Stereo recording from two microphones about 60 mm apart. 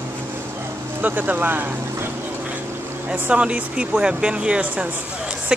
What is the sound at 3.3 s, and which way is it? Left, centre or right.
Speech, centre.